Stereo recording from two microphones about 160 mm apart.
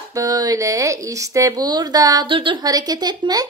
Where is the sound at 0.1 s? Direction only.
25° right (ahead or behind).